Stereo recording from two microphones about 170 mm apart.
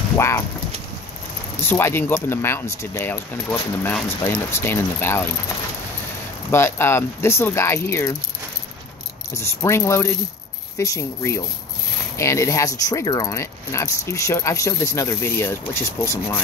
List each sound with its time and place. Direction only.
0.2 s speech: 15° left (ahead or behind)
1.6 s speech: 15° left (ahead or behind)
6.5 s speech: 15° left (ahead or behind)
9.3 s speech: 15° left (ahead or behind)